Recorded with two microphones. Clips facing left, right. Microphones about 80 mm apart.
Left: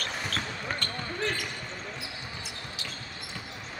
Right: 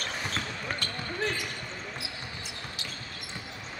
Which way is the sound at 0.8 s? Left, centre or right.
Centre.